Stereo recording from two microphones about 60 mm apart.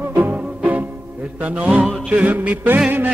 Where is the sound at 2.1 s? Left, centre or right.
Right.